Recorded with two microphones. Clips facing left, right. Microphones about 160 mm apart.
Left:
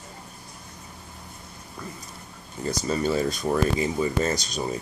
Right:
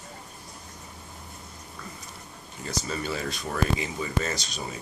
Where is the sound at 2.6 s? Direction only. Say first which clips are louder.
Left 7 dB; 40° left (ahead or behind).